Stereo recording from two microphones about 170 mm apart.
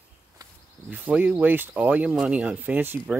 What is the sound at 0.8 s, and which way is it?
Speech, 10° right (ahead or behind).